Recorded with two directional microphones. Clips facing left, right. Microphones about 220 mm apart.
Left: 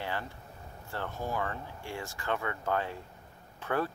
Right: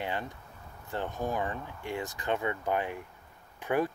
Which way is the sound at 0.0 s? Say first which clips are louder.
Right 2 dB; 20° right (ahead or behind).